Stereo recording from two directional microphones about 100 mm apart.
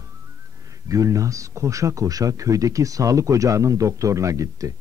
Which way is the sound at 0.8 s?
35° right (ahead or behind).